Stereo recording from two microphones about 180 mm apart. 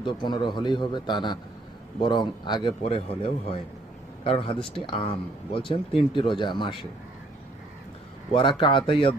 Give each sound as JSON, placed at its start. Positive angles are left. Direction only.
{"t": 0.0, "sound": "speech", "side_deg": 25}
{"t": 8.3, "sound": "speech", "side_deg": 25}